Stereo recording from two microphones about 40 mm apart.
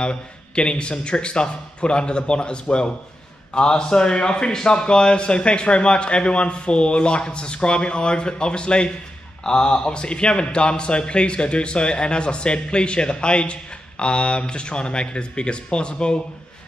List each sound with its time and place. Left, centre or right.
0.0 s a man's voice: left